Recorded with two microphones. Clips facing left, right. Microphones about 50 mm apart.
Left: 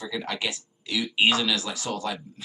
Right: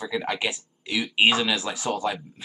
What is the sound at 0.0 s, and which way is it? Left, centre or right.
Speech, centre.